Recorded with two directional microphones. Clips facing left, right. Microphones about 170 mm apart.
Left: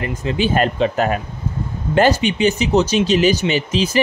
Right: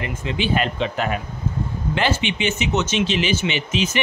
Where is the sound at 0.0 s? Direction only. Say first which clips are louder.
Left 5 dB; 40° left (ahead or behind).